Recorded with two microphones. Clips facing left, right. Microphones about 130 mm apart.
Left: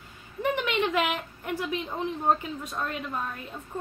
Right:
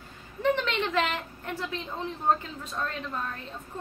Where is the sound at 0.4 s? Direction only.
15° left (ahead or behind).